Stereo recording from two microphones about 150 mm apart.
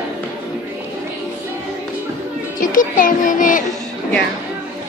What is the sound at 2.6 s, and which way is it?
Music, 60° left (ahead or behind).